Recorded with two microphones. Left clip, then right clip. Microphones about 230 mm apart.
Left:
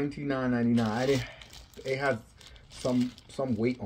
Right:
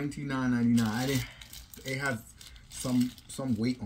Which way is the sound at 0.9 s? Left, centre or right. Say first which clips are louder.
Left 5 dB; centre.